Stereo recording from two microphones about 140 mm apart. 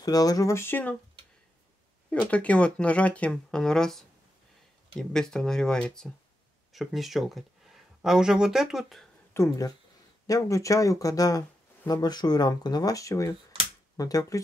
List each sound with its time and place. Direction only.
0.0 s speech: 25° left (ahead or behind)
2.0 s speech: 10° left (ahead or behind)
9.3 s speech: 20° left (ahead or behind)